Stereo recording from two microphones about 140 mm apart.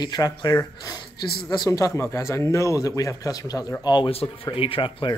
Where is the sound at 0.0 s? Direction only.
30° left (ahead or behind).